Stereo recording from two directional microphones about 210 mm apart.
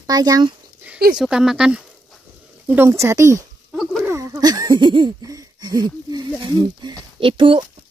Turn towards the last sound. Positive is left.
turn(degrees=-25)  # may be behind; listen again after turning